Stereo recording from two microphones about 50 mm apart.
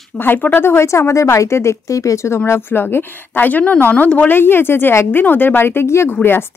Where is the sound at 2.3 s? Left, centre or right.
Left.